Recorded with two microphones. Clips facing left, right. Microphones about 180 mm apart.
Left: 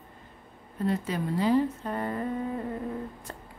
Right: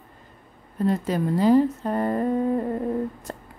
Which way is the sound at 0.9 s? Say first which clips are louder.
Right 5 dB; 45° right (ahead or behind).